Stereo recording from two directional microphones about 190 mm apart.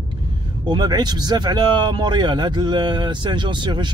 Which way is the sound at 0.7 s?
20° right (ahead or behind).